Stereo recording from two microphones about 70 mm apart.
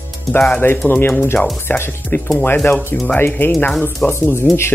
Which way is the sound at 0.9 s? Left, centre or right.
Left.